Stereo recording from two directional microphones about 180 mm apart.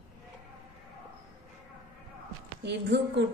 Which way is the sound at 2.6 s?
75° right (ahead or behind).